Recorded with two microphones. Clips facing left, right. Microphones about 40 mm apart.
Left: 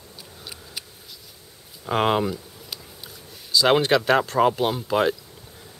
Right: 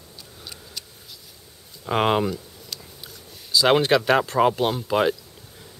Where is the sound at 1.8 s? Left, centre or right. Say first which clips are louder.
Even; centre.